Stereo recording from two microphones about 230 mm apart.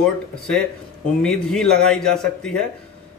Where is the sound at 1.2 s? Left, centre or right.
Centre.